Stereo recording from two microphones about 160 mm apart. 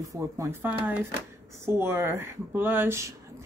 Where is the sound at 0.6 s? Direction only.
10° right (ahead or behind).